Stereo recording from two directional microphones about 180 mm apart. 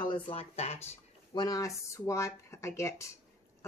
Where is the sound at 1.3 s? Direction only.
20° left (ahead or behind).